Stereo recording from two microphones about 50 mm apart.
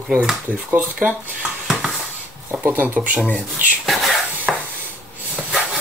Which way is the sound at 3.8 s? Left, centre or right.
Centre.